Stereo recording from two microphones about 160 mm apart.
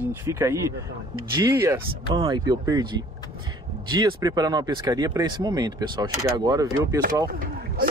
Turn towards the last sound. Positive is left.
turn(degrees=-65)  # may be behind; listen again after turning